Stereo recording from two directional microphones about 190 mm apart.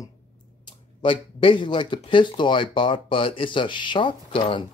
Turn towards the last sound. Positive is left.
turn(degrees=25)  # may be behind; listen again after turning